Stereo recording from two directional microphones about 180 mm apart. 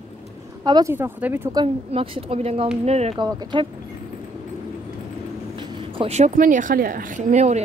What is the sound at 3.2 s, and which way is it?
Speech, 20° right (ahead or behind).